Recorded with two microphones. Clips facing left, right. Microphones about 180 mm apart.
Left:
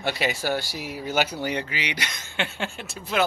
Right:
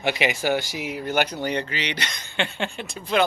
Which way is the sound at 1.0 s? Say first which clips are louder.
Right 1 dB; 5° left (ahead or behind).